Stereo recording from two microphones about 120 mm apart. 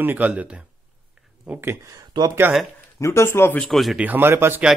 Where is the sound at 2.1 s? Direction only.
40° right (ahead or behind).